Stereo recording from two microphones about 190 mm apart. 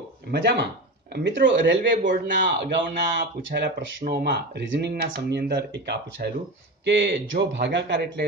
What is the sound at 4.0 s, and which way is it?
A man's voice, 60° right (ahead or behind).